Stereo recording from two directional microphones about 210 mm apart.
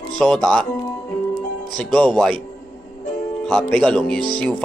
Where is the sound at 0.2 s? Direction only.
Centre (ahead or behind).